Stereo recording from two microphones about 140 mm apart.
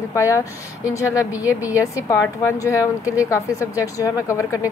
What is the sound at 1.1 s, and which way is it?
Speech, 10° right (ahead or behind).